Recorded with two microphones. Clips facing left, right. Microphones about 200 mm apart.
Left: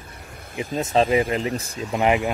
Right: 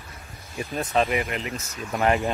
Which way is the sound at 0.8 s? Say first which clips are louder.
Left 5 dB; 25° left (ahead or behind).